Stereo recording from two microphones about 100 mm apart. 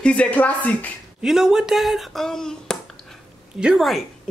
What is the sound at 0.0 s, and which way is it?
Speech, 10° left (ahead or behind).